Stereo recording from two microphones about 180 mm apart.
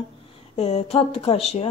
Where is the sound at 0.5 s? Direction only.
35° left (ahead or behind).